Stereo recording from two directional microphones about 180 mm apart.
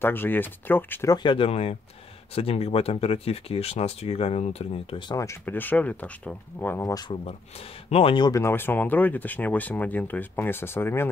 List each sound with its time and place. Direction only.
0.0 s speech: 10° left (ahead or behind)
1.1 s speech: 25° left (ahead or behind)
7.2 s speech: 35° left (ahead or behind); by 11.1 s 15° left (ahead or behind)